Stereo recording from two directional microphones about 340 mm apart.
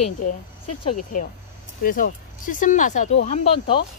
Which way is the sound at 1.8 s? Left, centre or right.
Left.